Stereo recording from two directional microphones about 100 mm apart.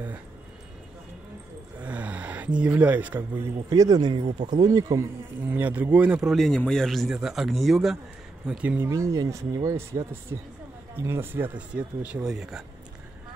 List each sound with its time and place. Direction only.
1.8 s a sound: 15° right (ahead or behind)
3.7 s speech: 40° right (ahead or behind)
5.5 s a man's voice: 15° right (ahead or behind)
6.3 s a man's voice: 5° left (ahead or behind)
8.5 s a man's voice: 15° right (ahead or behind)
8.8 s a man's voice: 30° right (ahead or behind); by 12.6 s 5° right (ahead or behind)